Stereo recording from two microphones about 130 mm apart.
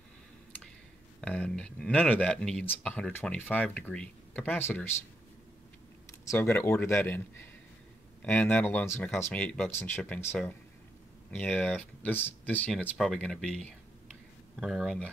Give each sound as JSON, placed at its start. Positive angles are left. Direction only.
{"t": 1.2, "sound": "speech", "side_deg": 5}
{"t": 6.3, "sound": "speech", "side_deg": 15}
{"t": 12.9, "sound": "speech", "side_deg": 0}